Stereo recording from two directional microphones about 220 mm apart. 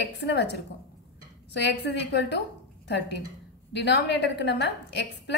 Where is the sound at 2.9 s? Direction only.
50° left (ahead or behind).